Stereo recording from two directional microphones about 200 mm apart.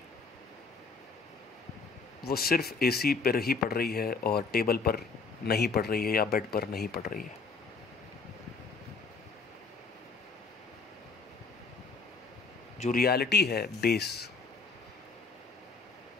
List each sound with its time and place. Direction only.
2.2 s speech: 50° left (ahead or behind)
12.7 s a sound: 35° left (ahead or behind)
13.0 s speech: 50° left (ahead or behind)